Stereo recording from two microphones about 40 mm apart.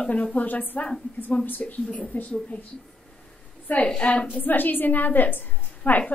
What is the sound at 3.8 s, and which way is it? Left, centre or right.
Speech, left.